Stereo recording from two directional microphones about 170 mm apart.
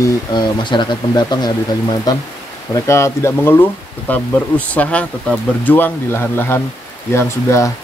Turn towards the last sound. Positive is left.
turn(degrees=15)  # may be behind; listen again after turning